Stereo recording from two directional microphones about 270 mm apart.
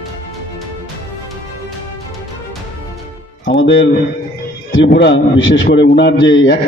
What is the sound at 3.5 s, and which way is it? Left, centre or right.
Speech, left.